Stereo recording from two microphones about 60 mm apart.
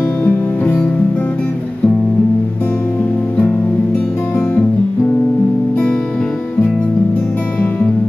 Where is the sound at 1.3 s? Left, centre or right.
Centre.